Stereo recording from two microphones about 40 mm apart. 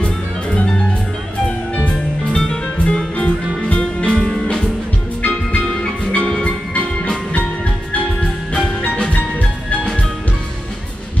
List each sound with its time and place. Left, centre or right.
0.0 s music: left
2.2 s music: left
4.1 s music: centre
5.2 s music: left
8.2 s music: left